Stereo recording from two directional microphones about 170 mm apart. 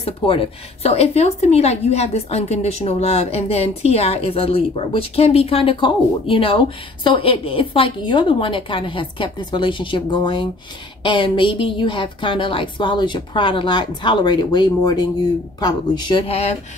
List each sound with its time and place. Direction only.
0.0 s a woman's voice: 30° left (ahead or behind)